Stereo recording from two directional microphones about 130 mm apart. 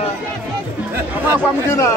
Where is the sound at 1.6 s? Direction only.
25° left (ahead or behind).